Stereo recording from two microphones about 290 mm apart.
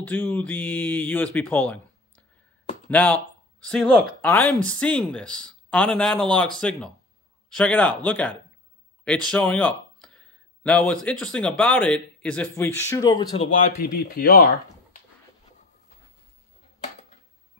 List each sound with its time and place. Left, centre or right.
0.0 s speech: centre
2.9 s speech: centre
13.7 s speech: left